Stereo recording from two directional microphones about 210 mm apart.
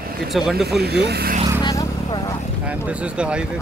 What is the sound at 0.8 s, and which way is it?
Speech, 50° right (ahead or behind).